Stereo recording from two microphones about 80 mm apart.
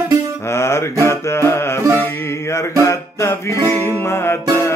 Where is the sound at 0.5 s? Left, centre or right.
Left.